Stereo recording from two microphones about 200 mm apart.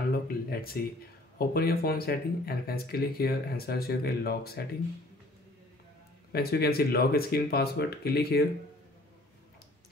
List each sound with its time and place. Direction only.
0.3 s a sound: 50° left (ahead or behind)
1.4 s speech: 50° left (ahead or behind)
6.3 s speech: 50° left (ahead or behind)